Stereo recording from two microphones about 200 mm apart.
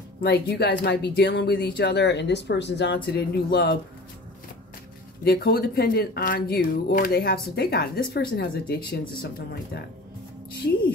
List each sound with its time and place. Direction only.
0.2 s speech: 55° left (ahead or behind)
5.2 s speech: 50° left (ahead or behind)